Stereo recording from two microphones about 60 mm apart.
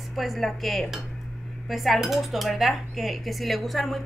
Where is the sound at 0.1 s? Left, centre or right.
Centre.